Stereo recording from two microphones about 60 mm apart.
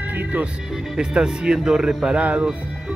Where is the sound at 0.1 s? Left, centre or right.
Right.